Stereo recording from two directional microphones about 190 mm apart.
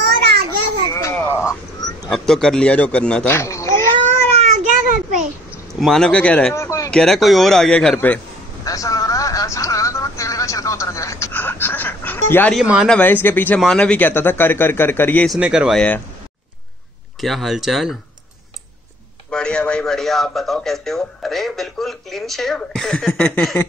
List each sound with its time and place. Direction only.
0.8 s a sound: 15° left (ahead or behind)
2.0 s speech: centre (ahead or behind)
4.0 s a sound: 35° right (ahead or behind)
5.8 s speech: centre (ahead or behind)
6.9 s a man's voice: centre (ahead or behind)
8.6 s a sound: 20° left (ahead or behind)
12.5 s a man's voice: centre (ahead or behind)
12.9 s speech: 10° left (ahead or behind)
15.3 s a man's voice: 5° right (ahead or behind)
17.2 s a man's voice: centre (ahead or behind)
19.3 s a man's voice: 5° left (ahead or behind)